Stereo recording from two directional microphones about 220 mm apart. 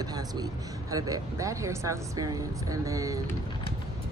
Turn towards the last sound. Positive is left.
turn(degrees=-15)  # may be behind; listen again after turning